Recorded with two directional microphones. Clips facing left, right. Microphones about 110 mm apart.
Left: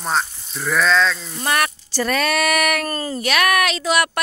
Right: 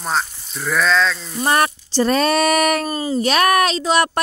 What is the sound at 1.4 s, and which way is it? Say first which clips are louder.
Speech: right 3 dB; 30° right (ahead or behind).